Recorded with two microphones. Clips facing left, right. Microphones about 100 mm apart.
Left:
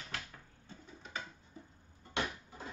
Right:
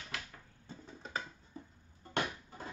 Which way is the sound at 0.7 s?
35° right (ahead or behind).